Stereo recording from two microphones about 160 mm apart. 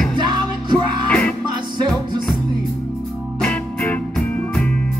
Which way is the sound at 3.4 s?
5° left (ahead or behind).